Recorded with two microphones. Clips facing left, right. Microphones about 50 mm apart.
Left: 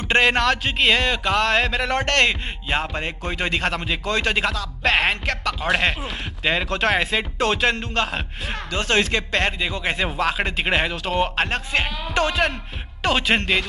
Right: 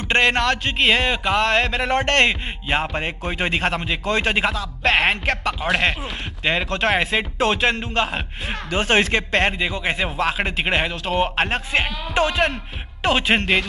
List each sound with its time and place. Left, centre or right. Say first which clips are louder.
0.1 s a sound: even; centre
0.8 s speech: right 1 dB; centre
1.8 s speech: right 2 dB; centre
4.8 s music: right 1 dB; centre
5.2 s speech: right 2 dB; right
5.6 s a sound: left 1 dB; centre
6.4 s speech: even; centre
8.7 s speech: right 2 dB; right; by 13.7 s centre